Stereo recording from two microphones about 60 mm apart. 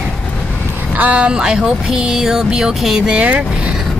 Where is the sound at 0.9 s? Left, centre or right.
Right.